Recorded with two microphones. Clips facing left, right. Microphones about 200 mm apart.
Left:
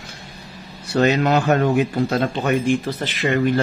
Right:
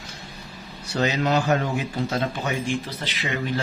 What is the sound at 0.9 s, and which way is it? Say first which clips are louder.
Speech: left 5 dB; 60° left (ahead or behind).